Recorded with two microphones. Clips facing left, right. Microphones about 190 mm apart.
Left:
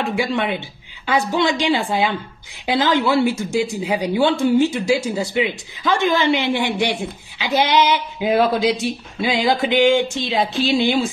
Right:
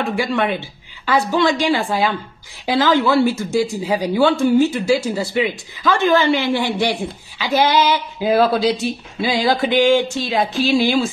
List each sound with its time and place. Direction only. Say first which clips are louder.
0.1 s a woman's voice: right 1 dB; 20° left (ahead or behind)